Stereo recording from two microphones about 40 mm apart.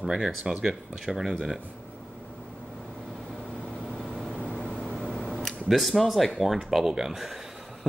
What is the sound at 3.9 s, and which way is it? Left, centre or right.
Vehicle, centre.